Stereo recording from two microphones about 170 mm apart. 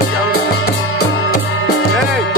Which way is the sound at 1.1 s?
75° left (ahead or behind).